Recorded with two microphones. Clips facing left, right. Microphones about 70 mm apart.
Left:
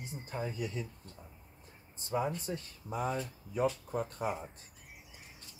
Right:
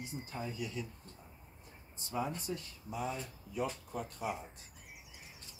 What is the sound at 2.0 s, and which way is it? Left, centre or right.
Speech, left.